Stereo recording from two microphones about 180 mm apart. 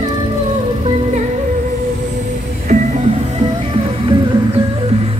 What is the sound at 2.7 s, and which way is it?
Music, 45° right (ahead or behind).